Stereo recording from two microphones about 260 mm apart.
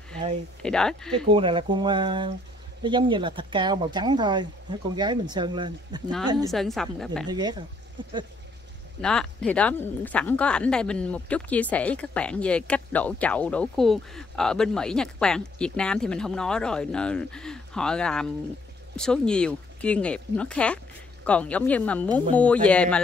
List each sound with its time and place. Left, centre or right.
0.6 s speech: centre
1.3 s speech: centre
6.5 s speech: centre
7.2 s speech: centre
9.0 s speech: centre